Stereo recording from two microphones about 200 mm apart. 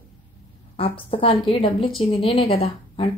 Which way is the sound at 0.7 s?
25° left (ahead or behind).